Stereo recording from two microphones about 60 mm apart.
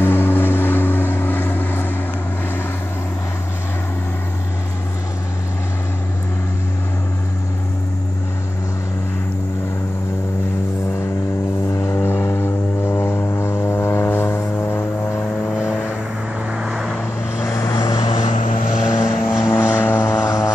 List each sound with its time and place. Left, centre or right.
0.0 s vehicle: left
11.9 s vehicle: left
16.5 s vehicle: centre
17.4 s vehicle: left
18.7 s vehicle: centre
19.5 s vehicle: left